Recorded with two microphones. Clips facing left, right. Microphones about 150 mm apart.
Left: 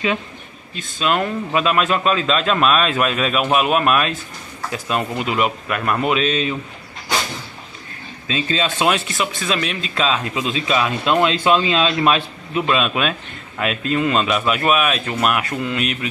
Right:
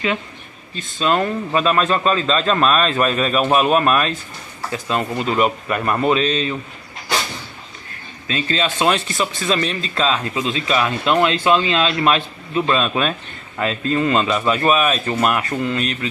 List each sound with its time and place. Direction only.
0.7 s a man's voice: centre (ahead or behind)
8.3 s speech: 15° left (ahead or behind)
8.8 s a man's voice: 5° left (ahead or behind)
10.7 s a man's voice: 15° left (ahead or behind)